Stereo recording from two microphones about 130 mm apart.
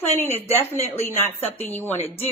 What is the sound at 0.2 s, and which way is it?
A woman's voice, 15° left (ahead or behind).